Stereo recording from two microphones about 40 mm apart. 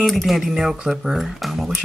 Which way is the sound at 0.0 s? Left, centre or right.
Centre.